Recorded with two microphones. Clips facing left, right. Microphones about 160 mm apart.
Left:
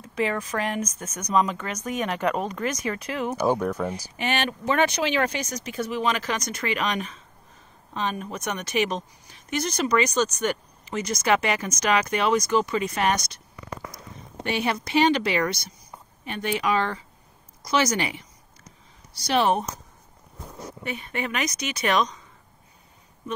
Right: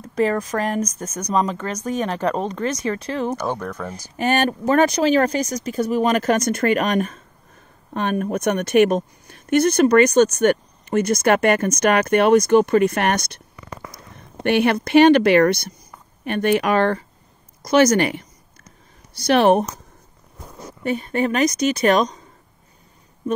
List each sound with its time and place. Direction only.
0.0 s speech: 40° right (ahead or behind)
3.3 s speech: 5° left (ahead or behind)
4.2 s speech: 45° right (ahead or behind); by 19.7 s 60° right (ahead or behind)
20.8 s speech: 40° right (ahead or behind)